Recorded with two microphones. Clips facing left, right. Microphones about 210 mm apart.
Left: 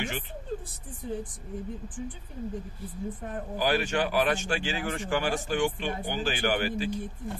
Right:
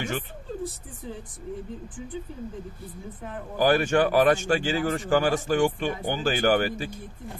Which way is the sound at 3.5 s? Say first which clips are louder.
Right 6 dB; 45° right (ahead or behind).